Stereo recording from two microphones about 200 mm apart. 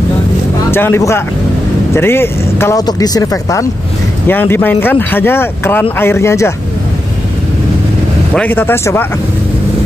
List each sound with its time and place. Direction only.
0.7 s speech: 10° left (ahead or behind)
8.4 s speech: 10° left (ahead or behind)